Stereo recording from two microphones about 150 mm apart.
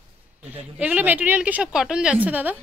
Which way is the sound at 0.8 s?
10° right (ahead or behind).